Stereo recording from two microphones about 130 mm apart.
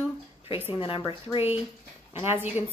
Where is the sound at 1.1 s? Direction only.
40° left (ahead or behind).